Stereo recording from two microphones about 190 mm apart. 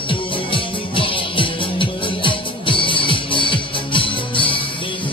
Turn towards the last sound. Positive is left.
turn(degrees=25)  # may be behind; listen again after turning